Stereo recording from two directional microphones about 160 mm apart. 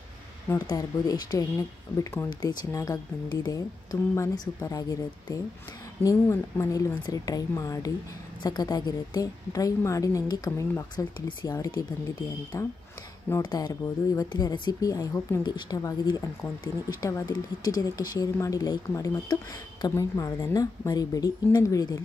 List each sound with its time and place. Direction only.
0.7 s speech: 25° left (ahead or behind)